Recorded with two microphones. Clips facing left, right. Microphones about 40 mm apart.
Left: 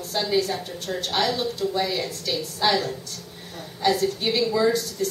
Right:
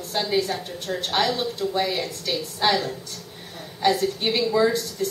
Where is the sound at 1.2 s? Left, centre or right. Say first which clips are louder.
Even; centre.